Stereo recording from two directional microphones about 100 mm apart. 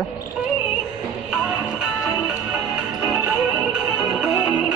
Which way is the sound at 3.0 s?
10° right (ahead or behind).